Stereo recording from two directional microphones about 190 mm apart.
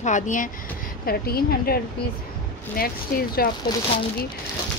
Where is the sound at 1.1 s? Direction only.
55° left (ahead or behind).